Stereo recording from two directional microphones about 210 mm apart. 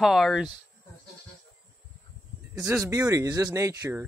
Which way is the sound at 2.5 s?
15° right (ahead or behind).